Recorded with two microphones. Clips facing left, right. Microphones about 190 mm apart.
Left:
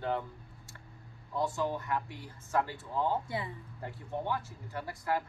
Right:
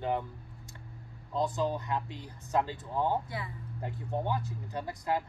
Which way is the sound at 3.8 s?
20° right (ahead or behind).